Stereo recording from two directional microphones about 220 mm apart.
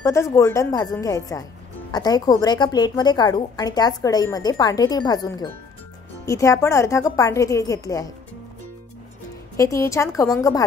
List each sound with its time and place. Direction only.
0.0 s a woman's voice: 15° left (ahead or behind)
9.6 s a woman's voice: 15° left (ahead or behind)